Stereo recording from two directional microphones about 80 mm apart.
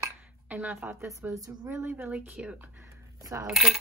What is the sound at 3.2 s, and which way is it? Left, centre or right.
Coin, right.